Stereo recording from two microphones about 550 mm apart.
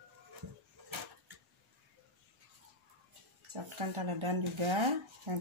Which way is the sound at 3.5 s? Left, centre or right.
Right.